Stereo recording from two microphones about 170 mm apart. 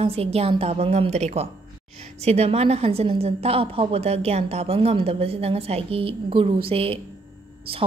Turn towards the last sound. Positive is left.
turn(degrees=-35)  # may be behind; listen again after turning